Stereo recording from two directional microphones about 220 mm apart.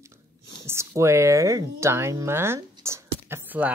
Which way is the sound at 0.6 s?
10° right (ahead or behind).